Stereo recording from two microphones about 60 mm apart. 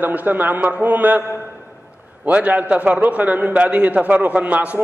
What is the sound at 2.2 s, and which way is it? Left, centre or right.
A man's voice, right.